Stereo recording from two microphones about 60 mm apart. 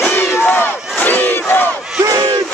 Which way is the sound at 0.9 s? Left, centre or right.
Left.